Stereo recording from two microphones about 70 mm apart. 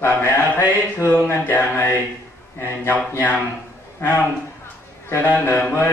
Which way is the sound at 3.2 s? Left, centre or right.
Left.